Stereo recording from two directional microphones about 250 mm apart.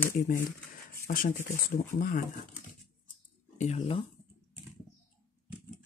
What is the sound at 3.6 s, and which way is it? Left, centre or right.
Speech, left.